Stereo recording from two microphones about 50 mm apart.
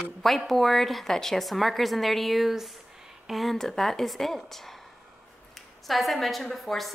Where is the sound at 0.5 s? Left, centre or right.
Centre.